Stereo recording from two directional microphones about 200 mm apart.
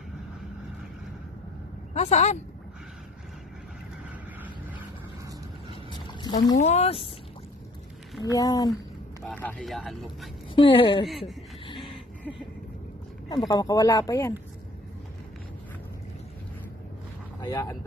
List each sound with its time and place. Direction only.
2.0 s speech: 35° left (ahead or behind)
5.9 s a sound: 20° left (ahead or behind)
6.5 s speech: 35° left (ahead or behind)
8.2 s speech: 20° left (ahead or behind)
9.2 s speech: 10° left (ahead or behind)
10.5 s speech: 25° left (ahead or behind)
11.1 s speech: centre (ahead or behind)
11.6 s a sound: 25° left (ahead or behind)
13.3 s speech: 20° left (ahead or behind)
17.4 s a sound: 20° left (ahead or behind)